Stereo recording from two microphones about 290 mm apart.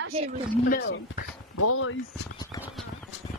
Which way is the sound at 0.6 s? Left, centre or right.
Left.